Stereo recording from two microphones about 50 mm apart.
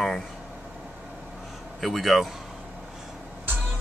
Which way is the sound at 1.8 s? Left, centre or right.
Centre.